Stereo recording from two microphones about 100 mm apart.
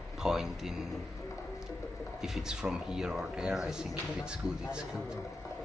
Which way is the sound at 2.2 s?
5° right (ahead or behind).